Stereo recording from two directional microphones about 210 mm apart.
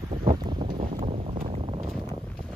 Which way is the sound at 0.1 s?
30° right (ahead or behind).